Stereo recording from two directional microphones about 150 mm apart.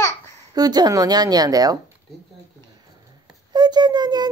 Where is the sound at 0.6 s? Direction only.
25° right (ahead or behind).